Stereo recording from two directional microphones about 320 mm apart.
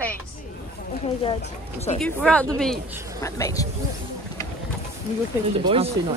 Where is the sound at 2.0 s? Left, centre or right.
Centre.